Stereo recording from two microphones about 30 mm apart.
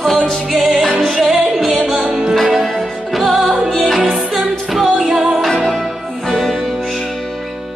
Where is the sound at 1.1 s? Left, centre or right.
Centre.